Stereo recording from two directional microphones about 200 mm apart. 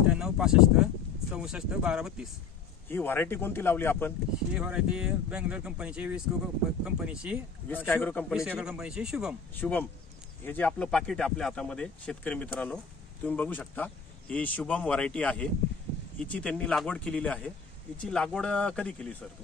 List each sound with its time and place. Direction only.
0.1 s speech: 5° right (ahead or behind)
2.9 s speech: 10° left (ahead or behind)
4.6 s speech: 5° right (ahead or behind)
7.6 s speech: 10° left (ahead or behind)
8.3 s speech: 5° right (ahead or behind)
9.6 s speech: 10° left (ahead or behind)